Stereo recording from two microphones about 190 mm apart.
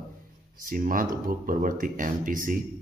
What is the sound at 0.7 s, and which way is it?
Speech, 45° right (ahead or behind).